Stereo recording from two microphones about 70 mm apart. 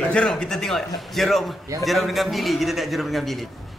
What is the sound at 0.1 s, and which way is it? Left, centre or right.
Speech, centre.